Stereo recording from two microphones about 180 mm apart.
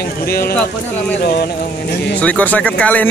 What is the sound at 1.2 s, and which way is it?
Speech, 60° left (ahead or behind).